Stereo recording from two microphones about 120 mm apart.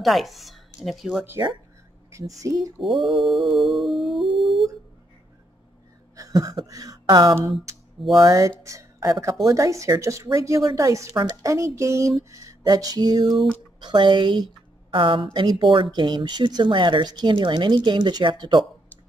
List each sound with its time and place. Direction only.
0.0 s speech: centre (ahead or behind)
2.0 s speech: 25° right (ahead or behind)
2.8 s music: centre (ahead or behind)
4.4 s a sound: centre (ahead or behind)
6.1 s a sound: 30° right (ahead or behind)
7.1 s a woman's voice: 35° right (ahead or behind)
13.3 s music: centre (ahead or behind)
13.7 s a woman's voice: 40° right (ahead or behind)